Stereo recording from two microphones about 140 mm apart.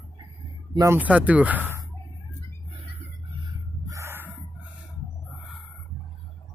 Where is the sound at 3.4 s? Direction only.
20° right (ahead or behind).